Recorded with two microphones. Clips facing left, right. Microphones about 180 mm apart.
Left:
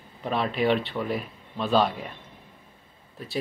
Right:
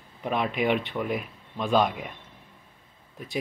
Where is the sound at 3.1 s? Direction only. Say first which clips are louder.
Left 1 dB; 15° right (ahead or behind).